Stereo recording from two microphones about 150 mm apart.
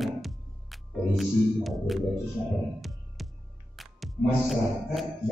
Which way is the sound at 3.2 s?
Centre (ahead or behind).